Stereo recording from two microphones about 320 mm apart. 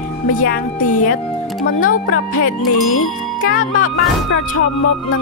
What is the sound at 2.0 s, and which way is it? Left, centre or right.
Speech, left.